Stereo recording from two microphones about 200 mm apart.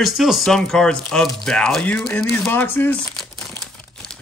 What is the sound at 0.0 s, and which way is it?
Speech, centre (ahead or behind).